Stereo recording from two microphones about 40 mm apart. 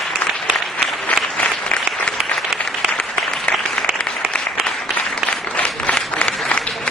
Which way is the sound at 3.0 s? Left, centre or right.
Centre.